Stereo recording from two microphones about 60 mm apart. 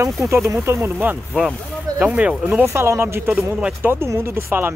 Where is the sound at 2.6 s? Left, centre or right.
Right.